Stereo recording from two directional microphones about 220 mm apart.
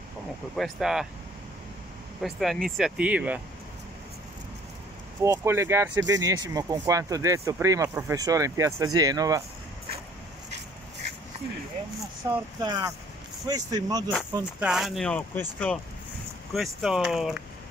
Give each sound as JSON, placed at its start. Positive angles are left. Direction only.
{"t": 0.6, "sound": "speech", "side_deg": 0}
{"t": 2.2, "sound": "speech", "side_deg": 0}
{"t": 5.2, "sound": "speech", "side_deg": -10}
{"t": 12.3, "sound": "speech", "side_deg": -15}
{"t": 14.3, "sound": "speech", "side_deg": -5}